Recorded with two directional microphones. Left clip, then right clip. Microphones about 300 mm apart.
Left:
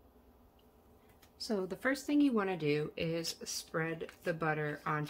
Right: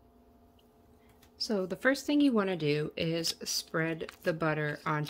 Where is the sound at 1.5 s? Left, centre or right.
Centre.